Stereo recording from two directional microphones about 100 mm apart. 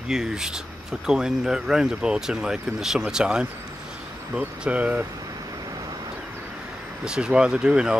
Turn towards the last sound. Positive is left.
turn(degrees=-10)  # may be behind; listen again after turning